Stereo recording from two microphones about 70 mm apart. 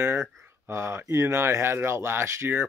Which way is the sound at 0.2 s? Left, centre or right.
Right.